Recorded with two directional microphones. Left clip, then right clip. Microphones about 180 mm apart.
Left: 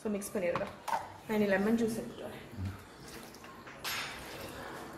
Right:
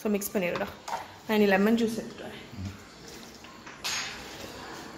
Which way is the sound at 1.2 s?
60° right (ahead or behind).